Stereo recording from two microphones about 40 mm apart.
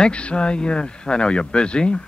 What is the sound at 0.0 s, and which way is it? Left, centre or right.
A man's voice, left.